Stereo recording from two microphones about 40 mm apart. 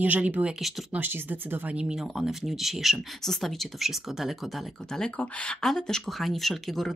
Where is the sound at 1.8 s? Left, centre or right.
Centre.